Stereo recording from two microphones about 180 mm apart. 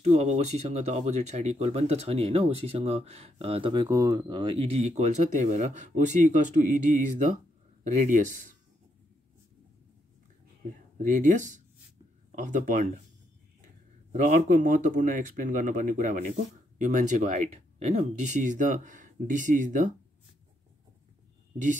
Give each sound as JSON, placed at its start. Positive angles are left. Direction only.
{"t": 0.0, "sound": "speech", "side_deg": -40}
{"t": 11.0, "sound": "speech", "side_deg": -45}
{"t": 14.1, "sound": "speech", "side_deg": -45}